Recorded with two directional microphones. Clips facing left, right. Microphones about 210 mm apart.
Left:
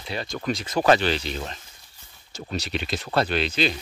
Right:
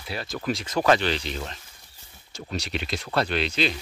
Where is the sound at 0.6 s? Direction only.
25° left (ahead or behind).